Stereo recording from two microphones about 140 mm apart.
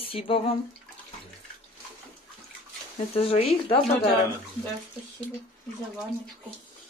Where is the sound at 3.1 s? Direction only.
45° left (ahead or behind).